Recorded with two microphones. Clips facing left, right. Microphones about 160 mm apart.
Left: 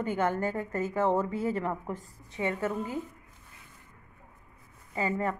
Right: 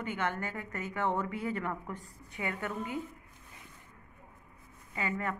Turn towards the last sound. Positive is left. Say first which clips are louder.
# left 5 dB
turn(degrees=30)  # may be behind; listen again after turning